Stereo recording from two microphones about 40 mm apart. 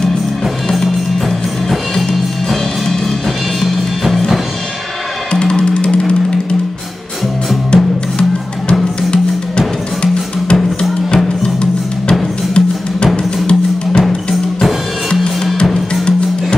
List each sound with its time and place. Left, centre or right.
3.6 s music: centre
5.3 s music: left
7.7 s music: left
10.5 s music: left
15.1 s drum: centre
15.9 s music: left